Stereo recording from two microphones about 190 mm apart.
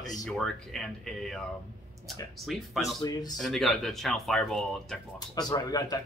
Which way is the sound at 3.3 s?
Centre (ahead or behind).